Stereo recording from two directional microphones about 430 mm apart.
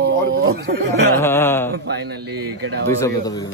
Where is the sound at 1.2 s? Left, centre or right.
Centre.